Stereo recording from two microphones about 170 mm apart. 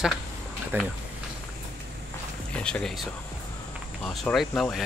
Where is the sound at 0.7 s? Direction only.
10° right (ahead or behind).